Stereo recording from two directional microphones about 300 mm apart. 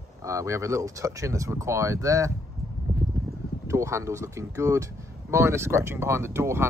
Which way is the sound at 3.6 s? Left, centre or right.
Centre.